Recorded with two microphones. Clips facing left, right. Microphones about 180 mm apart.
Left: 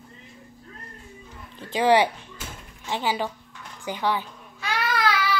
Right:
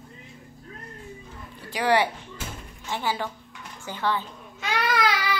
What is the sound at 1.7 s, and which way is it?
A child's voice, 20° left (ahead or behind).